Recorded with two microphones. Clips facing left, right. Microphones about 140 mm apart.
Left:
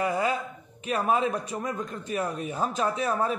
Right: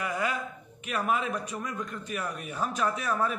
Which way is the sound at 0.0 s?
30° left (ahead or behind).